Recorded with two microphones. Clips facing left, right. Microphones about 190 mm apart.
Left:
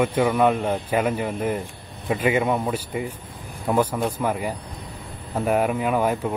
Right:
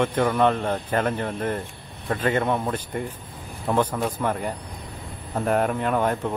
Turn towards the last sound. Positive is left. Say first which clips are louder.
# left 1 dB
turn(degrees=5)  # may be behind; listen again after turning